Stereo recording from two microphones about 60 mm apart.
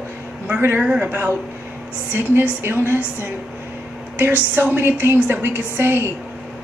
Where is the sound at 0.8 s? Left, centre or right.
Centre.